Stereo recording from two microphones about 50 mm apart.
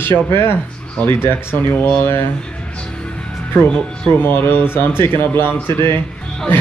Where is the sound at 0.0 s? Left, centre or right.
Left.